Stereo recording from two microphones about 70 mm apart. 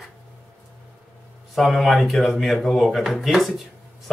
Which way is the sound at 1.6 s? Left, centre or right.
Centre.